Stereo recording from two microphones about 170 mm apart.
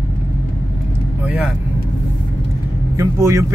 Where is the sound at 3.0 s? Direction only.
20° right (ahead or behind).